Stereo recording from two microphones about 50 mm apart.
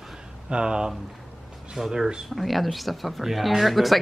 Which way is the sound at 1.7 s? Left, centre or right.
Centre.